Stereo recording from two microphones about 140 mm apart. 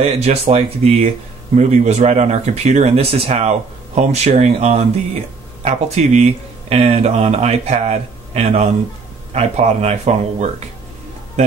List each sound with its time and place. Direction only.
0.0 s speech: 45° right (ahead or behind)